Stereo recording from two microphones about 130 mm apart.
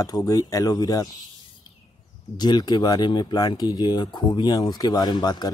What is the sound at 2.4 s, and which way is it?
Speech, 35° left (ahead or behind).